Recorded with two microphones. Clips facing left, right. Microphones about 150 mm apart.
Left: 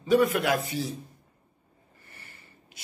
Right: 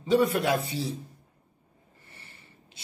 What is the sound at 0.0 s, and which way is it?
Speech, 30° right (ahead or behind).